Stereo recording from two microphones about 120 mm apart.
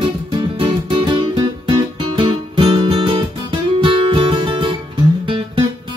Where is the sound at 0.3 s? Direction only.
45° right (ahead or behind).